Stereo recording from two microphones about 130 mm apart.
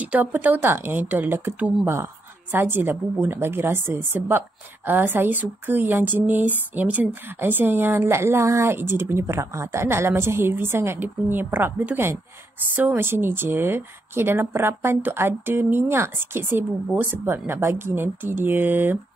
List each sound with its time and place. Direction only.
0.0 s a woman's voice: 15° right (ahead or behind)